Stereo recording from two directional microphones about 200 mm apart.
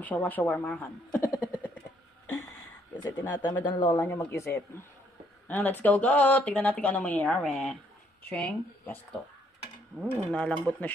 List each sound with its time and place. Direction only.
0.0 s speech: 10° left (ahead or behind)
1.2 s vehicle: 10° left (ahead or behind)
2.2 s a sound: 15° left (ahead or behind)
3.2 s speech: 20° left (ahead or behind)
10.2 s speech: 5° left (ahead or behind)